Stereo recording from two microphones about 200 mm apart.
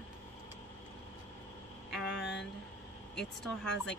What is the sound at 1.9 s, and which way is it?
Vehicle, 5° left (ahead or behind).